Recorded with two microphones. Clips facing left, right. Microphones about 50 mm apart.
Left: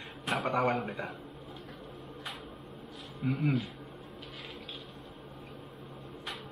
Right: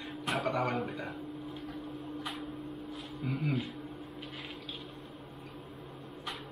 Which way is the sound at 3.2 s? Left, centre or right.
Left.